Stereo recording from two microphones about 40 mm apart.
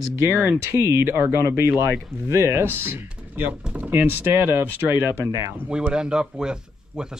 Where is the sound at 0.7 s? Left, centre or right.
Right.